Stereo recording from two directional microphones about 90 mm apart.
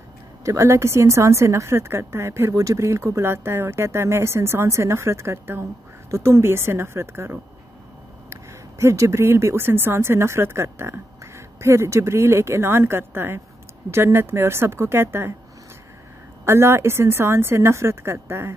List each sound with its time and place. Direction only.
0.5 s speech: 30° right (ahead or behind)
16.4 s speech: 30° right (ahead or behind)